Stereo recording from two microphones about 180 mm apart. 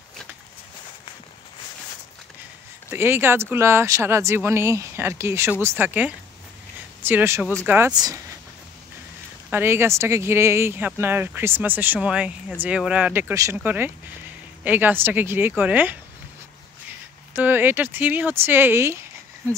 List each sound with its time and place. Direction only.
2.9 s speech: 10° right (ahead or behind)
9.5 s speech: 15° right (ahead or behind)
17.3 s speech: 10° right (ahead or behind)